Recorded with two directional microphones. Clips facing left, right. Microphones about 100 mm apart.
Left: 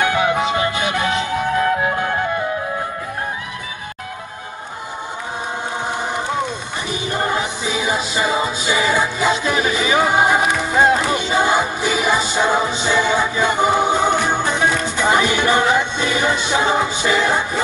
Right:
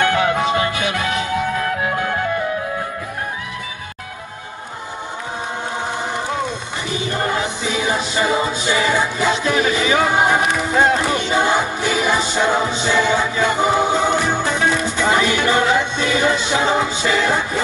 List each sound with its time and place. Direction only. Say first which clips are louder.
0.0 s music: even; 15° left (ahead or behind)
7.1 s music: left 1 dB; 15° left (ahead or behind)